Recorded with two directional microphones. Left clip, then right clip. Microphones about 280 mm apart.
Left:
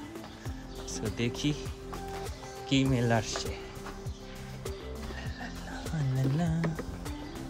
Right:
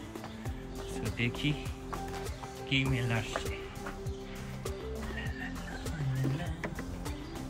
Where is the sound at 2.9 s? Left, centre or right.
Left.